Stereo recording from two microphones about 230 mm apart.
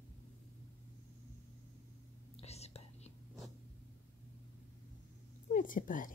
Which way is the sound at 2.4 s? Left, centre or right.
Left.